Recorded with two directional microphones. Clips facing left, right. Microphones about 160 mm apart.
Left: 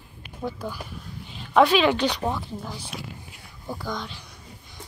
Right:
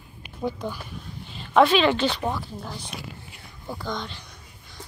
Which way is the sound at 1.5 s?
10° left (ahead or behind).